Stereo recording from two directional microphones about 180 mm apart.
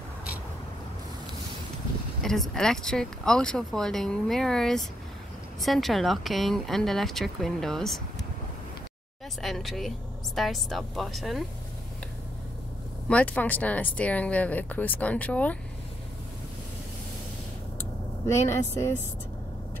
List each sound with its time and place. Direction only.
2.2 s speech: centre (ahead or behind)
9.4 s speech: centre (ahead or behind)
13.1 s speech: 5° left (ahead or behind)
18.2 s speech: 15° left (ahead or behind)